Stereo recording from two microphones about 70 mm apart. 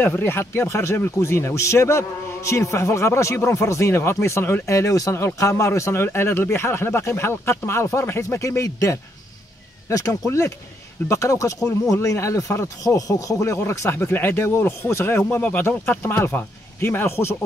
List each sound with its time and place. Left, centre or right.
0.0 s speech: left
5.1 s speech: left
13.7 s speech: left